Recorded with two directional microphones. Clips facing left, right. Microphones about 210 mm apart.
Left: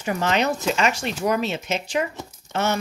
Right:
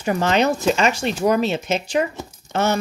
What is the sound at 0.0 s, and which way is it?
A woman's voice, 35° right (ahead or behind).